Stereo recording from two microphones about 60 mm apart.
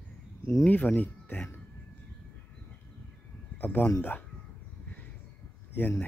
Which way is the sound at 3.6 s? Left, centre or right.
Left.